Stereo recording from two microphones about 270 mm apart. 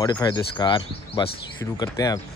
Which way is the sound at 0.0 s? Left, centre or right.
Centre.